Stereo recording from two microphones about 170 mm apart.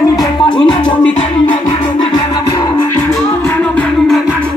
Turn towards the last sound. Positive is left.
turn(degrees=5)  # may be behind; listen again after turning